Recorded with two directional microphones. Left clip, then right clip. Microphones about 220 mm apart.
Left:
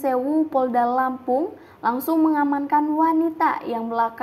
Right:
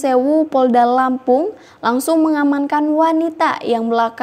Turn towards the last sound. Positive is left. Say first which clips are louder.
# right 7 dB
turn(degrees=-50)  # may be behind; listen again after turning